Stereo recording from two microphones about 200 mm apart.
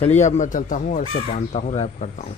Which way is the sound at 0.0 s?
35° left (ahead or behind).